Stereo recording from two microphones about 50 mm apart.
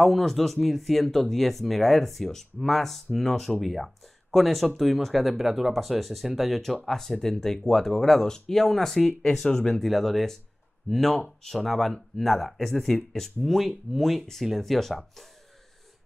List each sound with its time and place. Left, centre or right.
0.0 s speech: centre